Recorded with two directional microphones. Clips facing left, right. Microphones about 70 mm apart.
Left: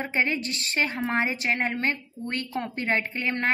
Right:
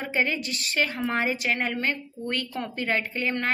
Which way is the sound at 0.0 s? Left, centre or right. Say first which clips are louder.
Even; left.